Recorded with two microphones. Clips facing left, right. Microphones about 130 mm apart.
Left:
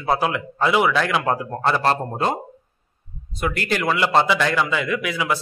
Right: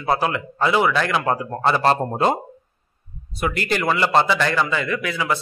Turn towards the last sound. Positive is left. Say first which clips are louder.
# even
turn(degrees=10)  # may be behind; listen again after turning